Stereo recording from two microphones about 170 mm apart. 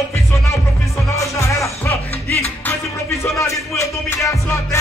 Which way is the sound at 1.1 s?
15° left (ahead or behind).